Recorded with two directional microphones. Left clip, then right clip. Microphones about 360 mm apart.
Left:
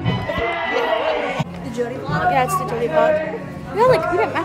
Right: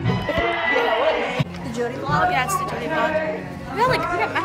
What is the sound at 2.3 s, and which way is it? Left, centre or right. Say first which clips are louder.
A woman's voice: left 3 dB; centre.